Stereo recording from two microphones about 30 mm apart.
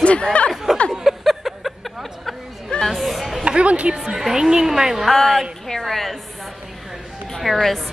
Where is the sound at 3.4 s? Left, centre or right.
Right.